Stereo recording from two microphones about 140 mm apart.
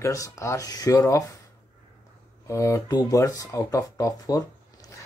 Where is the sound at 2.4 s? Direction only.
20° left (ahead or behind).